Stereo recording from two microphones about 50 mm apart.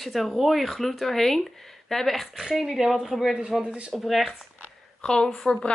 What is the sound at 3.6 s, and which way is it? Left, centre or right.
Speech, centre.